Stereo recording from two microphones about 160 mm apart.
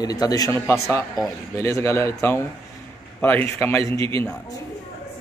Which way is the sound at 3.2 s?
15° left (ahead or behind).